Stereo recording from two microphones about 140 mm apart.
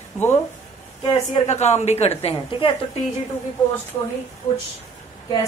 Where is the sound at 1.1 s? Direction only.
50° left (ahead or behind).